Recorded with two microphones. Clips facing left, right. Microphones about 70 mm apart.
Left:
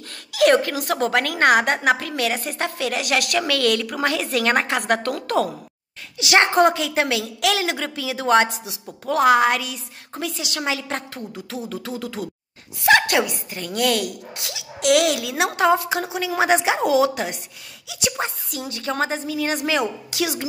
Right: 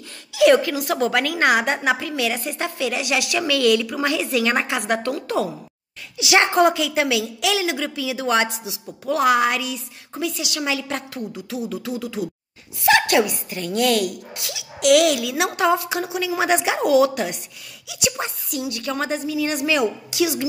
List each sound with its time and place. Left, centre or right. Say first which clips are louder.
0.3 s a woman's voice: right 2 dB; left